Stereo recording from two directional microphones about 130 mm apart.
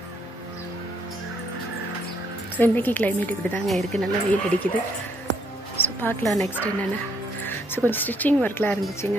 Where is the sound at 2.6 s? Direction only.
15° left (ahead or behind).